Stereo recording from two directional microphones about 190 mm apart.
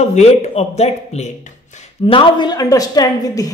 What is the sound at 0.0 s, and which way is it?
Speech, 35° left (ahead or behind).